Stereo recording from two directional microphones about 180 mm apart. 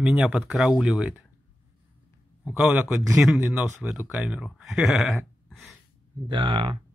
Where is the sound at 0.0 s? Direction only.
5° right (ahead or behind).